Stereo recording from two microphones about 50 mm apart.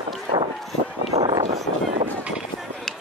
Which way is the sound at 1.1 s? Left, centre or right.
Right.